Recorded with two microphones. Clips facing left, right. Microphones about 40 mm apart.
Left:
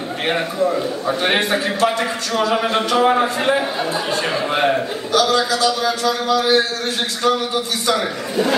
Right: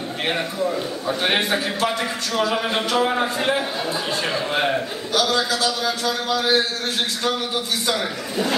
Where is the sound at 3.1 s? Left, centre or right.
Centre.